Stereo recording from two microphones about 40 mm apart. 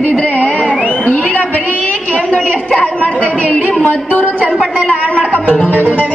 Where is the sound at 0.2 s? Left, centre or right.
Left.